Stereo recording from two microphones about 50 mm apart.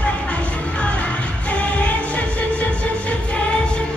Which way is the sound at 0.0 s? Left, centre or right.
Left.